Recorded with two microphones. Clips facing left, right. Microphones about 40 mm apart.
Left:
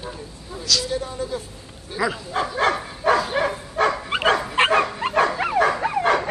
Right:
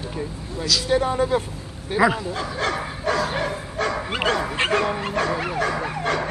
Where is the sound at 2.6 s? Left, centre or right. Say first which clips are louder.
Left 4 dB; centre.